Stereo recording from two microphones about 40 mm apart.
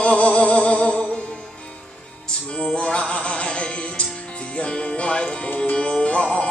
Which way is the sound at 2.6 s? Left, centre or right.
Left.